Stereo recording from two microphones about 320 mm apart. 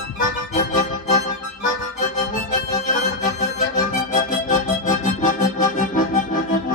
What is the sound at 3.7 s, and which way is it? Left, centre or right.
Music, left.